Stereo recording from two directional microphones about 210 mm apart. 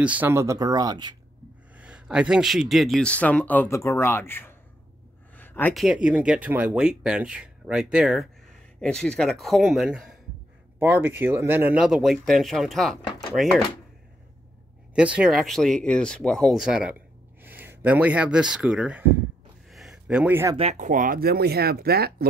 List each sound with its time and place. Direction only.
0.0 s speech: 5° right (ahead or behind)
1.8 s speech: 5° right (ahead or behind)
5.3 s a sound: 10° left (ahead or behind)
5.9 s speech: 5° right (ahead or behind)
15.1 s speech: centre (ahead or behind)
19.7 s a sound: centre (ahead or behind)
20.5 s speech: 30° right (ahead or behind); by 22.1 s 50° right (ahead or behind)